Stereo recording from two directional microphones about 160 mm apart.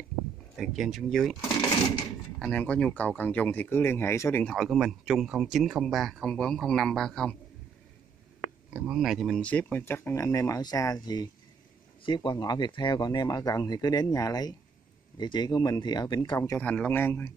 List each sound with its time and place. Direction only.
0.6 s speech: centre (ahead or behind)
2.3 s speech: 5° left (ahead or behind)
4.5 s speech: centre (ahead or behind)
8.7 s speech: 5° right (ahead or behind)
9.4 s speech: 10° left (ahead or behind)